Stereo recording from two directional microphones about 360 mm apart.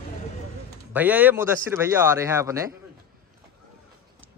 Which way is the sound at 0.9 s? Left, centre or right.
Centre.